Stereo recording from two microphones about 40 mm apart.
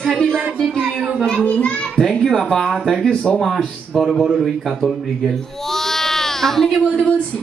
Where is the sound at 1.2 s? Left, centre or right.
Left.